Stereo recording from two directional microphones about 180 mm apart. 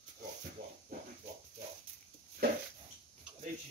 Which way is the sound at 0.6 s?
60° right (ahead or behind).